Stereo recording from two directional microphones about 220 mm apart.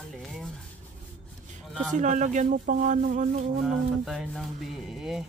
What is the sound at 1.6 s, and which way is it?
Speech, centre (ahead or behind).